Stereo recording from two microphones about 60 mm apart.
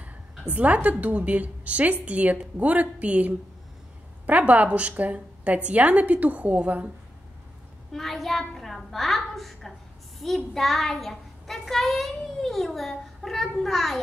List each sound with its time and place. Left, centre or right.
0.0 s a sound: right
1.0 s a woman's voice: right
7.9 s a woman's voice: centre